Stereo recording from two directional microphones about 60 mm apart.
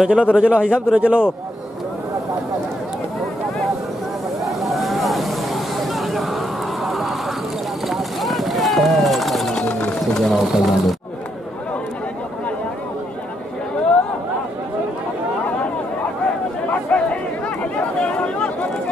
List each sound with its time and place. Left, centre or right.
0.0 s a man's voice: centre
4.4 s vehicle: centre
7.9 s a sound: centre
10.1 s speech: centre
16.7 s chatter: left